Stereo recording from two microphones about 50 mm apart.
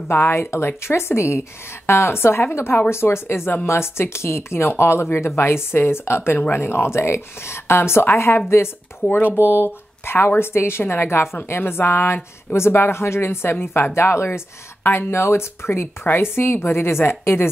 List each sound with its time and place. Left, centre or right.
0.1 s a woman's voice: left